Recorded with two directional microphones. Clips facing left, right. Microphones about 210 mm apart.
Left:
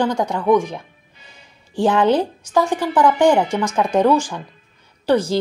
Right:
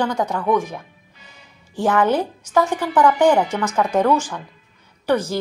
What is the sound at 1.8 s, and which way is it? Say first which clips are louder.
Speech: left 2 dB; 20° left (ahead or behind).